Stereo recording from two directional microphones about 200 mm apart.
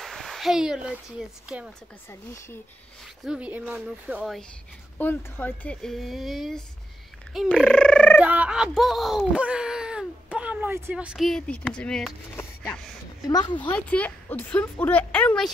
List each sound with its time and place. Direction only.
0.0 s a sound: centre (ahead or behind)
1.5 s speech: 5° right (ahead or behind)
2.0 s speech: 10° left (ahead or behind)
3.3 s speech: 5° right (ahead or behind)
4.9 s speech: 10° left (ahead or behind)
8.2 s speech: 5° right (ahead or behind); by 13.6 s 20° left (ahead or behind)
13.6 s speech: 5° left (ahead or behind)